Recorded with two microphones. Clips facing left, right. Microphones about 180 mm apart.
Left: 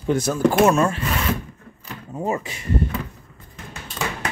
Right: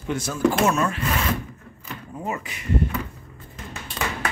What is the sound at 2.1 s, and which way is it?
Speech, 30° left (ahead or behind).